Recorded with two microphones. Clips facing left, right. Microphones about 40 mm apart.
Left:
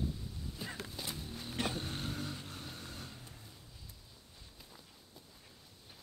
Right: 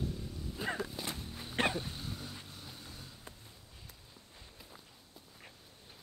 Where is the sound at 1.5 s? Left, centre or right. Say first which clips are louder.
Right 5 dB; right.